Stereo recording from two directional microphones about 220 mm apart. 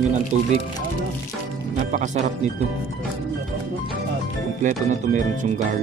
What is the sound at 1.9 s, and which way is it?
Speech, 35° right (ahead or behind).